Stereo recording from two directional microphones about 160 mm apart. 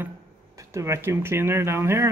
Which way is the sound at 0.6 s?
20° right (ahead or behind).